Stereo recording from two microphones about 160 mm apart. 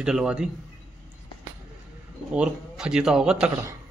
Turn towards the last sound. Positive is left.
turn(degrees=-5)  # may be behind; listen again after turning